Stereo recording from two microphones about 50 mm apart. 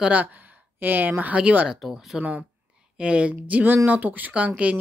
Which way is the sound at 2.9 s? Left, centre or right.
Right.